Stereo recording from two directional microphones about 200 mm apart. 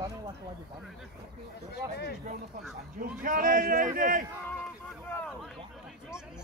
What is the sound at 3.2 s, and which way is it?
A man's voice, 45° right (ahead or behind).